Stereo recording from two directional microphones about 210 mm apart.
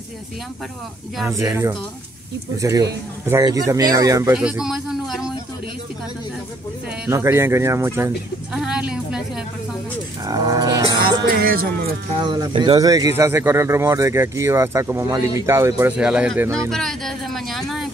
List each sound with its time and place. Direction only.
1.2 s speech: 15° right (ahead or behind)
7.1 s speech: 15° right (ahead or behind)
10.2 s speech: 15° right (ahead or behind)
11.2 s music: 45° right (ahead or behind)
12.2 s speech: 20° right (ahead or behind)
16.7 s a sound: centre (ahead or behind)